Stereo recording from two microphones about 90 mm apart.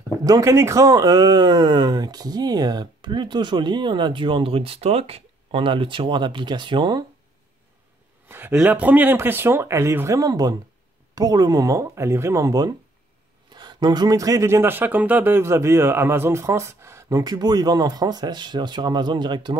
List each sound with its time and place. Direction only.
0.2 s speech: 40° right (ahead or behind); by 7.0 s 60° right (ahead or behind)
8.3 s speech: 25° right (ahead or behind); by 12.7 s 40° right (ahead or behind)
13.5 s speech: 50° right (ahead or behind); by 17.2 s 30° right (ahead or behind)
17.2 s speech: 50° right (ahead or behind)